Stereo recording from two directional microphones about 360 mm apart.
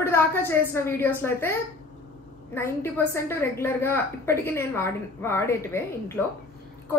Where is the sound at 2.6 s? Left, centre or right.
Centre.